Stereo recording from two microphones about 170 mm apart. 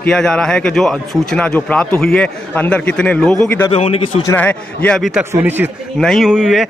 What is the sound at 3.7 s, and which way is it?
Speech, 35° left (ahead or behind).